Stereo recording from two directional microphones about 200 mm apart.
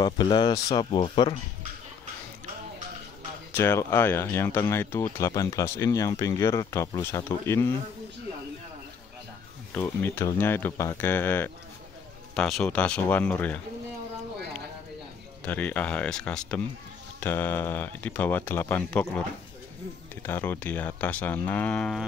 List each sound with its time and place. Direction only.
0.0 s speech: 20° left (ahead or behind)
3.5 s speech: 10° left (ahead or behind)
9.8 s speech: 10° left (ahead or behind)
15.4 s speech: 5° left (ahead or behind)
20.2 s speech: 10° left (ahead or behind)